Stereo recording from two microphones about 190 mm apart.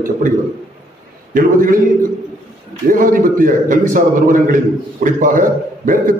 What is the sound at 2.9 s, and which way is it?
A man's voice, 45° right (ahead or behind).